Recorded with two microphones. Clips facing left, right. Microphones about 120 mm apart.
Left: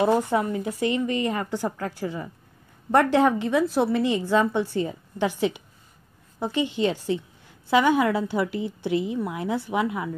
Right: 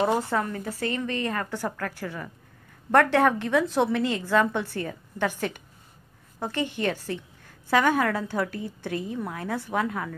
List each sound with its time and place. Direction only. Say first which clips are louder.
0.0 s a woman's voice: left 3 dB; 15° left (ahead or behind)
6.4 s a woman's voice: left 4 dB; 15° left (ahead or behind)